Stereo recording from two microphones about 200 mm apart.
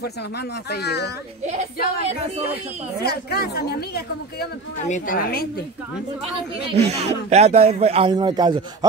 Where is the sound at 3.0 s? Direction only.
50° left (ahead or behind).